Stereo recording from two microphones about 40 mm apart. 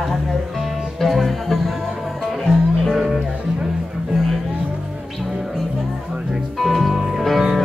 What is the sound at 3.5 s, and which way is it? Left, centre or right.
Music, centre.